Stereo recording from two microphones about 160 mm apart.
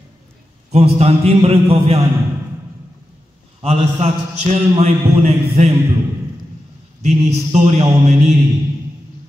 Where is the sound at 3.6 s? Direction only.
40° right (ahead or behind).